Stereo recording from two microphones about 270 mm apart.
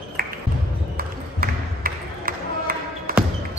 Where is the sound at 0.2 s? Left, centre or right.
Right.